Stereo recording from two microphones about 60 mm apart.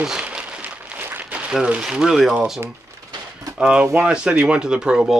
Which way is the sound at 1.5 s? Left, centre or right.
Centre.